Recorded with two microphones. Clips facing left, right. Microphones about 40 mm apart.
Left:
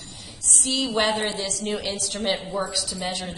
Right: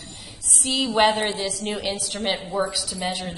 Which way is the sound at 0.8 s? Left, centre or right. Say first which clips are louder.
Right 5 dB; right.